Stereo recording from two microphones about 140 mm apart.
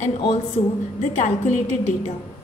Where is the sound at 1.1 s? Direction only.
55° left (ahead or behind).